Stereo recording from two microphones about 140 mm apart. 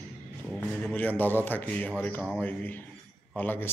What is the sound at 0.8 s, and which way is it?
A man's voice, 10° left (ahead or behind).